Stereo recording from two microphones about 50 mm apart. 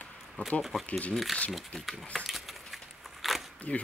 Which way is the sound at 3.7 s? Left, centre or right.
Left.